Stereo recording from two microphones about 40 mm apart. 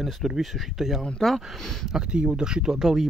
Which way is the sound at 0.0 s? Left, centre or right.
Centre.